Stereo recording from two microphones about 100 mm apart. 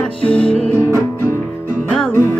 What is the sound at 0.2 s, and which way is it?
Music, 15° left (ahead or behind).